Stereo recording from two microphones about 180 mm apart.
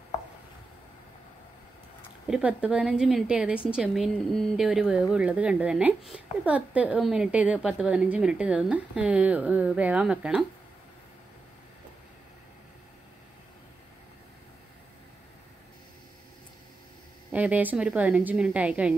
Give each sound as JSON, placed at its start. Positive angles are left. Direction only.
{"t": 2.2, "sound": "speech", "side_deg": -5}
{"t": 17.3, "sound": "speech", "side_deg": -10}